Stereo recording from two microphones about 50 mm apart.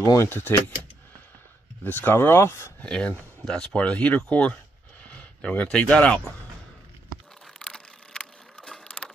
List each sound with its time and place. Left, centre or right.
0.0 s speech: left
0.3 s speech: left
1.8 s speech: left
2.8 s speech: centre
3.7 s speech: left
7.5 s a sound: centre